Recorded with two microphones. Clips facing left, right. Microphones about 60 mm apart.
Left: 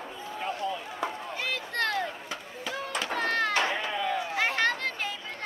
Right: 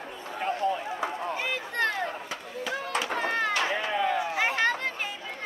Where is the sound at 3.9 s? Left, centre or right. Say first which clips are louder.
Right 3 dB; centre.